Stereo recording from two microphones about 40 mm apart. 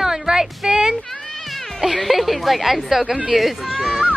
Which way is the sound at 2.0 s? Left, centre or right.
Centre.